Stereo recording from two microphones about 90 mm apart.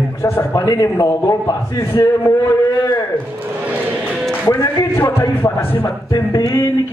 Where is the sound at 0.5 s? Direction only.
45° left (ahead or behind).